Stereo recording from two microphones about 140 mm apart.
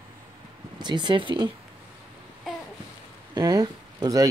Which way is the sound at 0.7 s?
30° right (ahead or behind).